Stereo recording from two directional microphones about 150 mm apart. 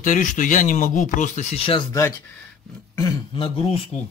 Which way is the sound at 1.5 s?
35° left (ahead or behind).